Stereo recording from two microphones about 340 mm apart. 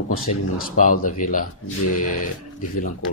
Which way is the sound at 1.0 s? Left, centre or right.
Left.